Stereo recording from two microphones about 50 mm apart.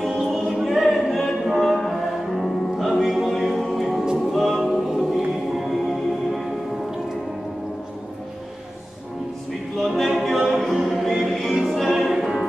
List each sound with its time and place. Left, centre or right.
0.0 s choir: centre
0.5 s a capella: centre
1.5 s music: centre
9.8 s a capella: centre
10.4 s music: centre